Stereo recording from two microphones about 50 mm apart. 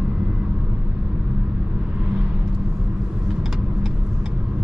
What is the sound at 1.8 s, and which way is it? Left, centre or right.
Vehicle, centre.